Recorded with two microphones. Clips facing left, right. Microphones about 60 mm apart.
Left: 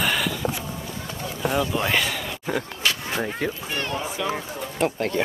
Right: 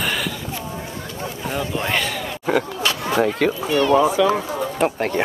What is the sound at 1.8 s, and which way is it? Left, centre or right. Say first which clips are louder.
Speech: right 1 dB; centre.